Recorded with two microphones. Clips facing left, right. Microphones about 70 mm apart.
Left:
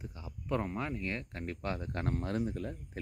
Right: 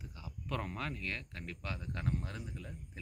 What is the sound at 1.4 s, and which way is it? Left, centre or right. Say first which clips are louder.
Speech: left 8 dB; left.